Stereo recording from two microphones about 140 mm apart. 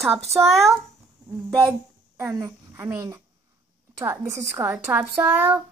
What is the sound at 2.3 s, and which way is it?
Speech, 25° right (ahead or behind).